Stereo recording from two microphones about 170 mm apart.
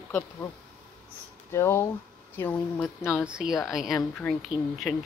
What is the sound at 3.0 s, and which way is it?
Speech, 5° right (ahead or behind).